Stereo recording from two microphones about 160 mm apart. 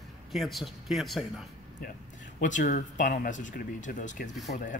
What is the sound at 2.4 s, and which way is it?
Speech, 55° left (ahead or behind).